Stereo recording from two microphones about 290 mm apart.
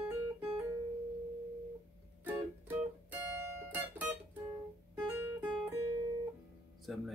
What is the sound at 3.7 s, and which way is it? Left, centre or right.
Music, centre.